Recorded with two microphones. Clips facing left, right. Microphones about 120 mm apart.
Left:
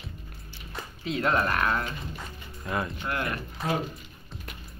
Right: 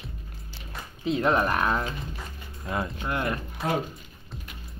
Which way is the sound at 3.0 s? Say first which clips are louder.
Right 2 dB; 20° right (ahead or behind).